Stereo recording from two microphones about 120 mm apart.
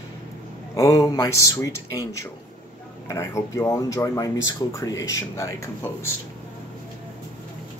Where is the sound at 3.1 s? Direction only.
25° left (ahead or behind).